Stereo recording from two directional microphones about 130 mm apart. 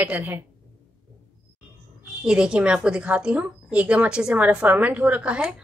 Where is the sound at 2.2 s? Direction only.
5° right (ahead or behind).